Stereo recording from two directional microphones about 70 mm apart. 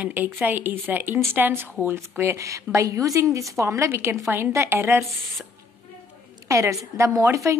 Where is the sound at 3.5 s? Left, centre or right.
Right.